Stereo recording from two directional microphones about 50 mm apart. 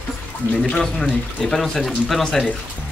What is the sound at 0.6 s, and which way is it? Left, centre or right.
Speech, centre.